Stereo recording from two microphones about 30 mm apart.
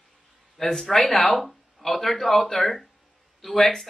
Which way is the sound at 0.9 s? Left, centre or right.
Centre.